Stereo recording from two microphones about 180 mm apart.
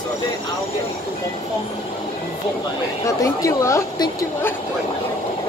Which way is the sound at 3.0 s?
20° left (ahead or behind).